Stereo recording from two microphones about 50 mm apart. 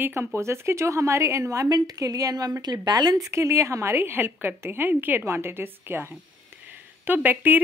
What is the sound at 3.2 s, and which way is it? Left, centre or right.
A woman's voice, right.